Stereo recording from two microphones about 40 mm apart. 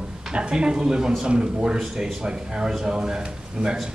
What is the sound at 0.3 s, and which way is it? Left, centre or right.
A man's voice, right.